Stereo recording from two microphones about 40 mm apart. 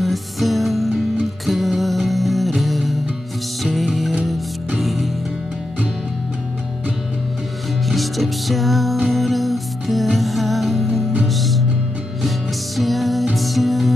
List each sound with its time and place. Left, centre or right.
0.0 s music: centre
7.9 s music: centre
12.7 s music: centre